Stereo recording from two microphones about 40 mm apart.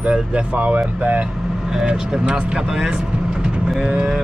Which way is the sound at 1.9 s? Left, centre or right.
Right.